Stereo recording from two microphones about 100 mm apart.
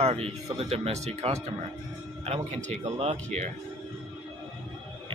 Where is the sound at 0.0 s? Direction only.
85° right.